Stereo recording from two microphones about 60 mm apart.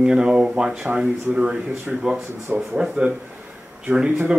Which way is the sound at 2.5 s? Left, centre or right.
Right.